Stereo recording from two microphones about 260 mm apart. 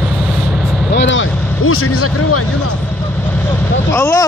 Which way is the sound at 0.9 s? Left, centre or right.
Left.